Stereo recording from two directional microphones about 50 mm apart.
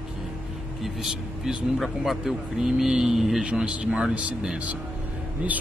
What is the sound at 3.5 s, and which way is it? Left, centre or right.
Speech, right.